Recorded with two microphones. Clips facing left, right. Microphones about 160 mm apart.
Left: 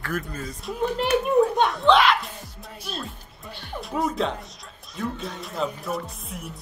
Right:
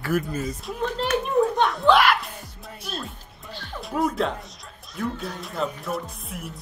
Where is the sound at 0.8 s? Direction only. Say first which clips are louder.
Left 2 dB; 10° left (ahead or behind).